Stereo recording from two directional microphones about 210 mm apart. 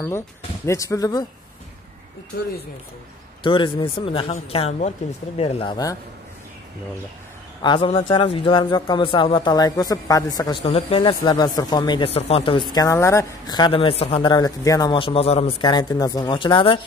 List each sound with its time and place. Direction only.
0.7 s speech: 15° left (ahead or behind)
3.4 s a man's voice: 25° left (ahead or behind)
7.6 s a man's voice: 25° left (ahead or behind)
12.7 s a man's voice: 15° left (ahead or behind)